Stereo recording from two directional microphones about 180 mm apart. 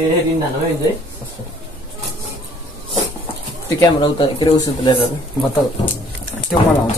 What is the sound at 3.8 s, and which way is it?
Speech, 25° left (ahead or behind).